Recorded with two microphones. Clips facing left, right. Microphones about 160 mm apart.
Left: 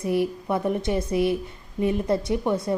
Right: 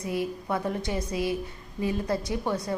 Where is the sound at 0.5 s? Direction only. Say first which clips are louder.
Left 5 dB; 25° left (ahead or behind).